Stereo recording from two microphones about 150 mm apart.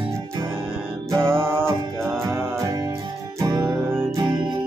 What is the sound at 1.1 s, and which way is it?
Music, 15° right (ahead or behind).